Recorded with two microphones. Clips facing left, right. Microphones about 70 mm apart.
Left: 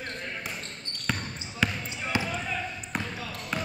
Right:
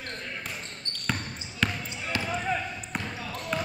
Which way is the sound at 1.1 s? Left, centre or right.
Centre.